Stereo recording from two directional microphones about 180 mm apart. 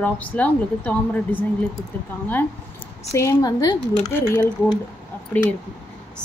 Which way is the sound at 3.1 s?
15° left (ahead or behind).